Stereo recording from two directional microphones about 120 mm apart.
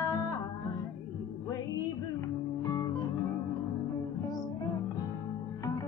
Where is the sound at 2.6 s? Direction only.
30° left (ahead or behind).